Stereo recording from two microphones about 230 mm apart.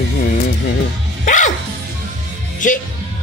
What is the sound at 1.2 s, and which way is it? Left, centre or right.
Music, left.